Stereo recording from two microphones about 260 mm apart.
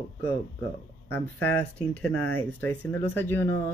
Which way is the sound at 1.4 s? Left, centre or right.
Centre.